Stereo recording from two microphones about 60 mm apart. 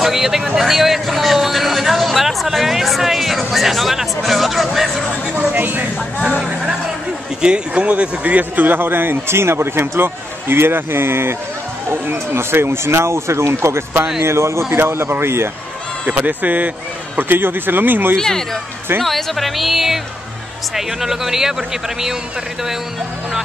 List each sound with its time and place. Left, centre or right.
0.0 s a man's voice: centre
5.3 s a man's voice: right
6.3 s a man's voice: centre; by 15.5 s right
16.1 s a man's voice: right
18.1 s a man's voice: centre